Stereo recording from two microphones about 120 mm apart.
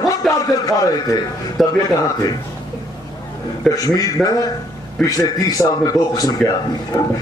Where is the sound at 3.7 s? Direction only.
30° left (ahead or behind).